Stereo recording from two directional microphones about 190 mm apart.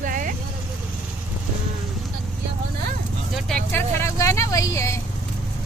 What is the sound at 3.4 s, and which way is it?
Speech, 5° left (ahead or behind).